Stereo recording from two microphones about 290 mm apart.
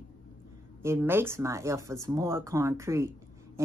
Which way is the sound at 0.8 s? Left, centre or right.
Centre.